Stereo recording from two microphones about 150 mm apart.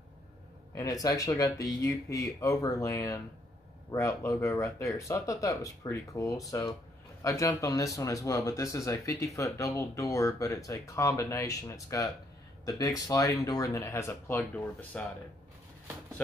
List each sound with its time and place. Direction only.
1.0 s speech: 25° left (ahead or behind)